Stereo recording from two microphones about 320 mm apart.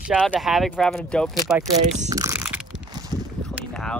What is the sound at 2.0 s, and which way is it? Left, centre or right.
Speech, centre.